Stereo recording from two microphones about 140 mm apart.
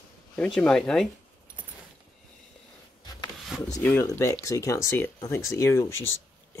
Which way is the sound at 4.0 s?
20° left (ahead or behind).